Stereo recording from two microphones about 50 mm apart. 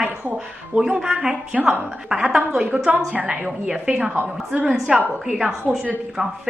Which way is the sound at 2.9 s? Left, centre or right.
Right.